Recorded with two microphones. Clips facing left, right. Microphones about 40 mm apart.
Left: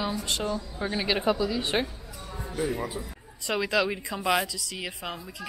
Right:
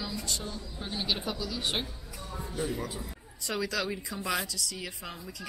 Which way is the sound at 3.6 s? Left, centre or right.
Left.